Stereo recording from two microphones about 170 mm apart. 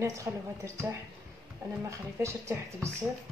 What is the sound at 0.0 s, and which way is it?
Speech, 15° right (ahead or behind).